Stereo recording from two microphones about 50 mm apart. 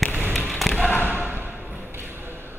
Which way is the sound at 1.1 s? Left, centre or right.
Right.